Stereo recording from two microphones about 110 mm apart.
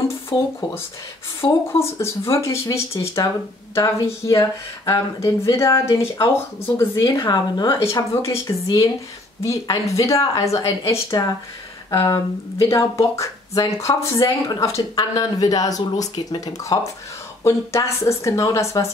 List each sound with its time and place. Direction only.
0.3 s speech: 25° left (ahead or behind)
7.0 s speech: 40° left (ahead or behind)
7.8 s speech: 25° left (ahead or behind)
12.6 s speech: 30° left (ahead or behind)